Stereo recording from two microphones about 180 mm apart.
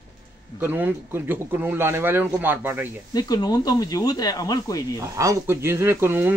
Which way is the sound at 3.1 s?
20° left (ahead or behind).